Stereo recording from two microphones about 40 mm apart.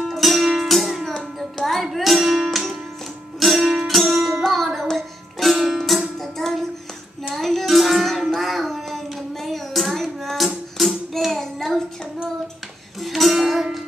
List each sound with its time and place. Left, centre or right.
0.0 s music: centre
9.4 s hands: centre
10.8 s child singing: centre
13.0 s music: centre